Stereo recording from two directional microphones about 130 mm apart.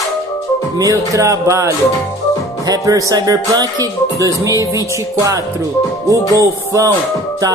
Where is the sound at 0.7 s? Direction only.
25° right (ahead or behind).